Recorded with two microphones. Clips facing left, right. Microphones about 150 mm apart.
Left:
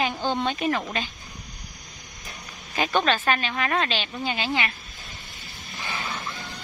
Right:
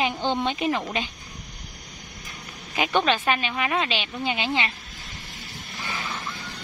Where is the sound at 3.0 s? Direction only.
15° right (ahead or behind).